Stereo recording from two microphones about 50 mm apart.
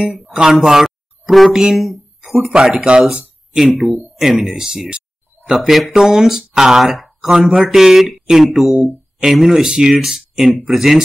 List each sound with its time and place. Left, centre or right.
0.0 s speech: centre
1.8 s a sound: centre
2.4 s speech: centre
7.2 s speech: centre